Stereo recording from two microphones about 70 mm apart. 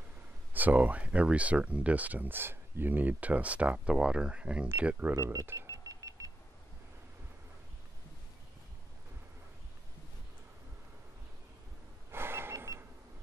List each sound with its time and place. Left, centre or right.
0.5 s speech: right
4.8 s speech: right
5.1 s speech: right
5.7 s vehicle: right
12.1 s a sound: right